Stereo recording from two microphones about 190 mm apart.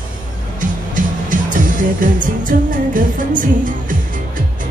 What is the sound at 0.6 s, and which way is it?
Music, 45° right (ahead or behind).